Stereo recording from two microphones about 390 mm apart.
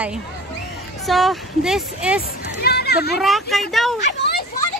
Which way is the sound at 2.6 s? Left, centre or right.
Left.